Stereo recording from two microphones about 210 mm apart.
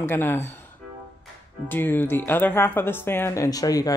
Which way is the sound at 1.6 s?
10° left (ahead or behind).